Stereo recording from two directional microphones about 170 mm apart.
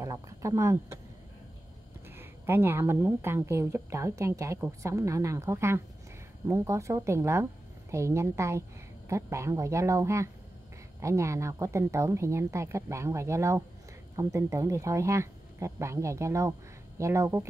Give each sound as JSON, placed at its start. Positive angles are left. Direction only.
{"t": 0.0, "sound": "speech", "side_deg": -20}
{"t": 2.0, "sound": "speech", "side_deg": -15}